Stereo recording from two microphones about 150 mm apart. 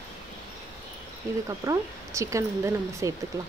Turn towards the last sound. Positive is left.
turn(degrees=-20)  # may be behind; listen again after turning